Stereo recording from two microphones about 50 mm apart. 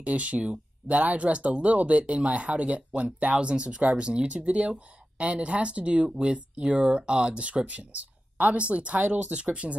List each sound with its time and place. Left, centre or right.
0.0 s speech: right
6.0 s speech: centre